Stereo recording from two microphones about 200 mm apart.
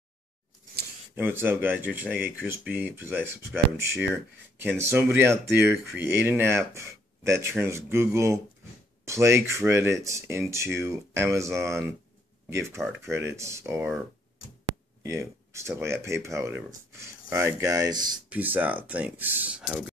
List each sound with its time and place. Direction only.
1.1 s speech: 10° right (ahead or behind)
15.0 s speech: 15° right (ahead or behind)